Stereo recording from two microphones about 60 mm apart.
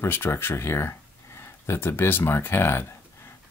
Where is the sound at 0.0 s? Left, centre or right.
Left.